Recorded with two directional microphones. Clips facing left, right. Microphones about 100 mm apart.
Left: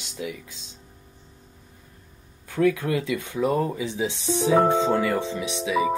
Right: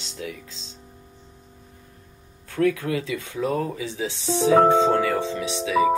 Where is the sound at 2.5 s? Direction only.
15° left (ahead or behind).